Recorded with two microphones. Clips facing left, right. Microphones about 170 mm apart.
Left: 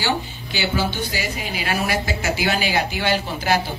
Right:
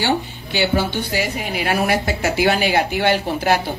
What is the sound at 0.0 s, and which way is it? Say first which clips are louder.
A woman's voice: right 4 dB; 60° right (ahead or behind).